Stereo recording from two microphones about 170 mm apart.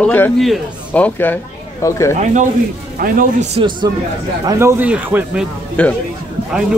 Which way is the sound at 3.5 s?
25° right (ahead or behind).